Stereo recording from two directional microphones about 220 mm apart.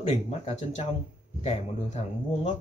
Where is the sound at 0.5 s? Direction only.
30° left (ahead or behind).